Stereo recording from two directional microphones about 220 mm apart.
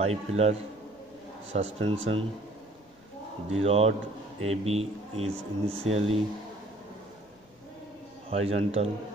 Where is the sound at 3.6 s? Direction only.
30° right (ahead or behind).